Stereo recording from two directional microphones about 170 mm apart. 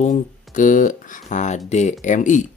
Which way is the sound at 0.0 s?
50° left (ahead or behind).